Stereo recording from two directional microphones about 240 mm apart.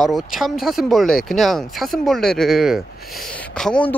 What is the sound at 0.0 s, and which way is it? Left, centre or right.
Speech, centre.